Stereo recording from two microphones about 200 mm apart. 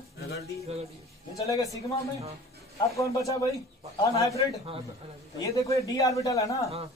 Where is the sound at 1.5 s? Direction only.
15° left (ahead or behind).